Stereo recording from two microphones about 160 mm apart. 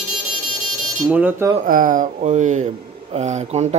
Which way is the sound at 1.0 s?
10° right (ahead or behind).